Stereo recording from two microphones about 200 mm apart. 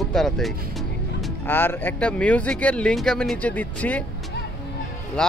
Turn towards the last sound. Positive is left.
turn(degrees=5)  # may be behind; listen again after turning